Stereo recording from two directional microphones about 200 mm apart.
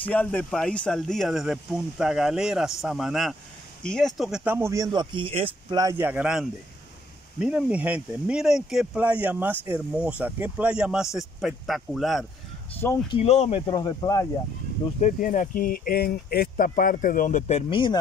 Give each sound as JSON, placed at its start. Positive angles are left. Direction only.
{"t": 0.1, "sound": "speech", "side_deg": 10}
{"t": 13.1, "sound": "speech", "side_deg": 30}
{"t": 13.7, "sound": "speech", "side_deg": 20}
{"t": 15.0, "sound": "speech", "side_deg": 40}